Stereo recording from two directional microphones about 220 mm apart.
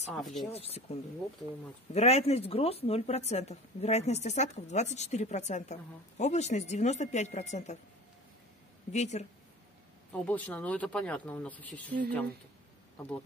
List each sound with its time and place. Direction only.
0.1 s speech: centre (ahead or behind)
0.5 s speech: 25° left (ahead or behind)
2.0 s a woman's voice: 30° left (ahead or behind)
8.9 s a woman's voice: 30° left (ahead or behind)
10.1 s speech: 5° left (ahead or behind)